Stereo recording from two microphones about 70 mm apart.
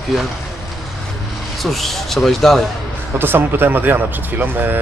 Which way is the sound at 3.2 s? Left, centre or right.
Right.